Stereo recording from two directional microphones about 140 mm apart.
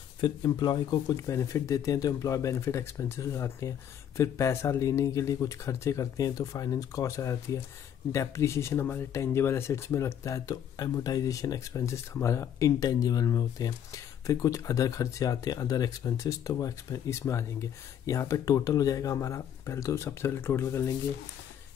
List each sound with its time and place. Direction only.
0.2 s speech: 30° left (ahead or behind)